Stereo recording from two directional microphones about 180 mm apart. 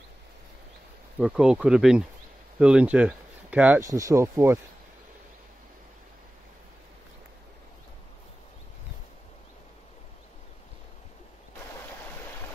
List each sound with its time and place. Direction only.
1.2 s speech: 5° right (ahead or behind)
3.8 s speech: 15° right (ahead or behind)